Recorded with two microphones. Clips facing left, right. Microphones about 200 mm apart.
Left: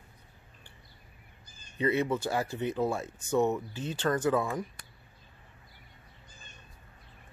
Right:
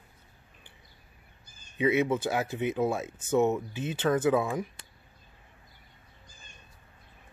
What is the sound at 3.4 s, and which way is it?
Speech, 20° right (ahead or behind).